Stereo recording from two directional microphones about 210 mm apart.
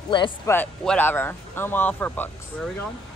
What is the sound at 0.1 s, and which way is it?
Speech, 20° left (ahead or behind).